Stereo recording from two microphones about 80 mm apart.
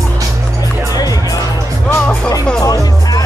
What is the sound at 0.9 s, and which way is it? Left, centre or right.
Music, left.